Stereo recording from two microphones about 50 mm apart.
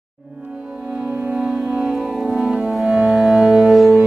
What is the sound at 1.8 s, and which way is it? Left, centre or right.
Music, centre.